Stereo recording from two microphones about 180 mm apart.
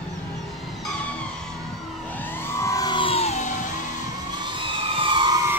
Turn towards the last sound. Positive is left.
turn(degrees=-25)  # may be behind; listen again after turning